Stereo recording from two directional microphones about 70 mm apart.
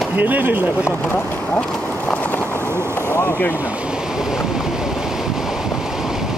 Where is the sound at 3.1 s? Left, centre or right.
Left.